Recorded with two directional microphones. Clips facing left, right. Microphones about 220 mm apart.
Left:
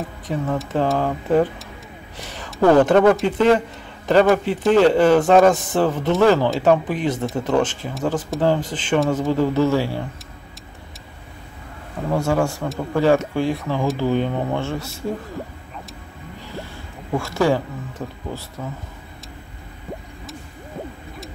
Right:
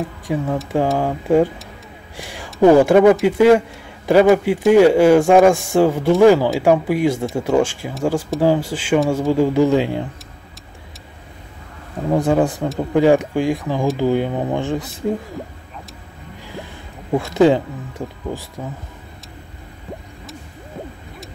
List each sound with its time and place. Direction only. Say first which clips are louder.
0.3 s speech: right 2 dB; 10° right (ahead or behind)
12.1 s speech: right 4 dB; 15° right (ahead or behind)
16.5 s speech: right 1 dB; 15° right (ahead or behind)